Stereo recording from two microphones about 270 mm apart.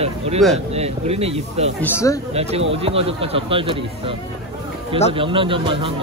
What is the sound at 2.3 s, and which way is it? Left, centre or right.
Speech, right.